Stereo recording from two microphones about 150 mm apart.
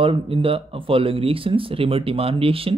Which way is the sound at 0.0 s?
35° right (ahead or behind).